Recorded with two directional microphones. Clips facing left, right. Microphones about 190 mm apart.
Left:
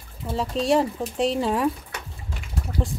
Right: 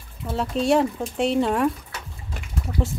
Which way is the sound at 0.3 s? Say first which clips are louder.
Right 1 dB; centre (ahead or behind).